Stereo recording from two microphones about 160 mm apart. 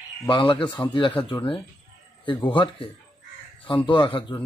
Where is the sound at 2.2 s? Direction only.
30° left (ahead or behind).